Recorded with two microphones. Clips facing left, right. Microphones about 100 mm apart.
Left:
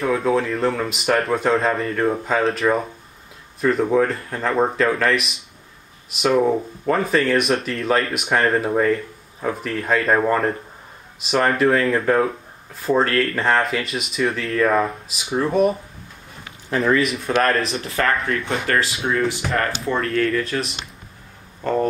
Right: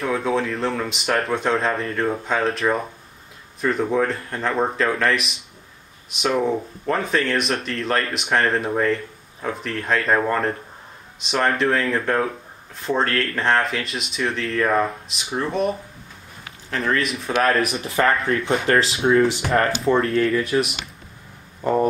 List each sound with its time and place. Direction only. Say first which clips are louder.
0.0 s speech: left 3 dB; centre (ahead or behind)
16.7 s speech: left 4 dB; 5° left (ahead or behind)
17.7 s speech: right 1 dB; 25° right (ahead or behind)
20.2 s speech: right 2 dB; 10° right (ahead or behind)